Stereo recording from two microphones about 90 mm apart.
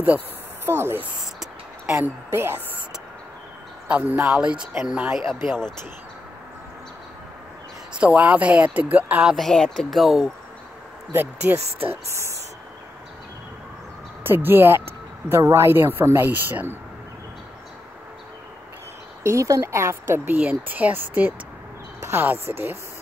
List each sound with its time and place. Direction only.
0.7 s speech: 25° right (ahead or behind)
3.8 s speech: 15° right (ahead or behind); by 5.7 s centre (ahead or behind)
7.9 s speech: 15° right (ahead or behind)
9.2 s speech: 5° right (ahead or behind)
9.5 s speech: 5° left (ahead or behind)
11.1 s speech: 25° right (ahead or behind)
14.2 s speech: 25° right (ahead or behind)
19.2 s speech: 35° right (ahead or behind)